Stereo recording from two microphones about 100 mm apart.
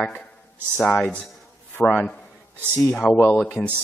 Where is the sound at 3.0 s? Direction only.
5° left (ahead or behind).